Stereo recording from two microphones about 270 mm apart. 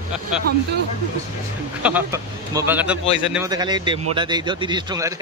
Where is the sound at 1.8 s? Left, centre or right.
Centre.